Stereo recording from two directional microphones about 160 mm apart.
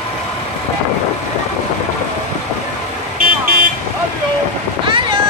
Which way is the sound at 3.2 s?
60° right (ahead or behind).